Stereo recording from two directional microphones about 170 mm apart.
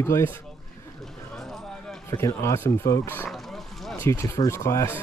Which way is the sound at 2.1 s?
15° left (ahead or behind).